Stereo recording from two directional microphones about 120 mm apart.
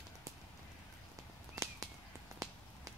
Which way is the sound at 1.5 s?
30° right (ahead or behind).